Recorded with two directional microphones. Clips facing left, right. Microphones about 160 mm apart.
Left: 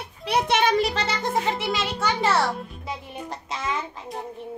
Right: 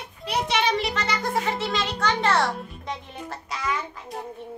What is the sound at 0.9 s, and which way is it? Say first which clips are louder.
Music: left 1 dB; 30° left (ahead or behind).